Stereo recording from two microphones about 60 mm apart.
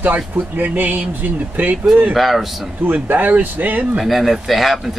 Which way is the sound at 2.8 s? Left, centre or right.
Right.